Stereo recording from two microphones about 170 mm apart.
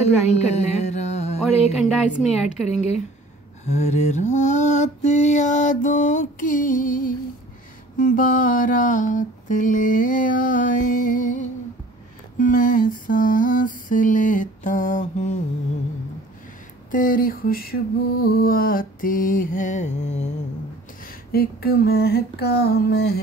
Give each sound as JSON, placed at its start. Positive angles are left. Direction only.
{"t": 0.0, "sound": "a sound", "side_deg": 40}
{"t": 2.4, "sound": "speech", "side_deg": -5}
{"t": 2.7, "sound": "speech", "side_deg": 40}
{"t": 3.6, "sound": "mantra", "side_deg": 40}
{"t": 12.4, "sound": "mantra", "side_deg": 50}
{"t": 16.9, "sound": "mantra", "side_deg": 55}
{"t": 21.0, "sound": "a sound", "side_deg": 60}